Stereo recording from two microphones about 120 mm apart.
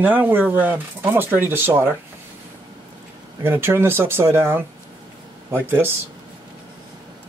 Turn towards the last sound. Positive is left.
turn(degrees=-15)  # may be behind; listen again after turning